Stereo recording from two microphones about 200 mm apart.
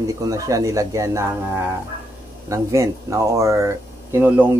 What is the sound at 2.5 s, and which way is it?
Speech, 15° right (ahead or behind).